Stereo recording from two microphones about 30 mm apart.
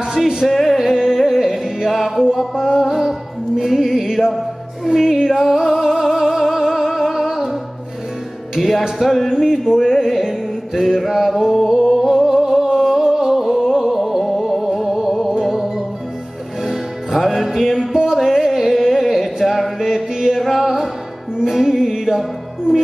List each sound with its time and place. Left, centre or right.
0.2 s music: centre
1.1 s music: centre
5.3 s music: centre
8.5 s music: centre
19.8 s chant: centre
20.4 s music: centre